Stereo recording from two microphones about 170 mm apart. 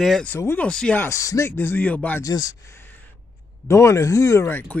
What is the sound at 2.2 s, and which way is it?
Speech, 25° left (ahead or behind).